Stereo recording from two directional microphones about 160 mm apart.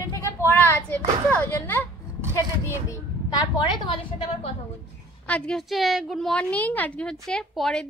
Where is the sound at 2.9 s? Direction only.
25° left (ahead or behind).